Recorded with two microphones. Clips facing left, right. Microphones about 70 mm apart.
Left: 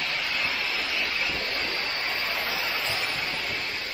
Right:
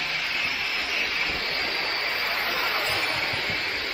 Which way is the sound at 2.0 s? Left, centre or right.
Right.